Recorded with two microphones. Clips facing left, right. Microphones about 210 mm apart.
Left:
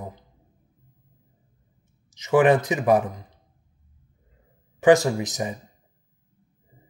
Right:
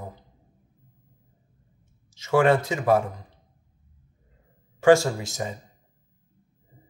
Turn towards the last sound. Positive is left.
turn(degrees=15)  # may be behind; listen again after turning